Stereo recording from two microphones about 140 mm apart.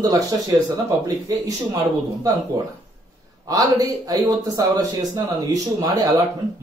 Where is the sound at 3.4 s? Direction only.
25° right (ahead or behind).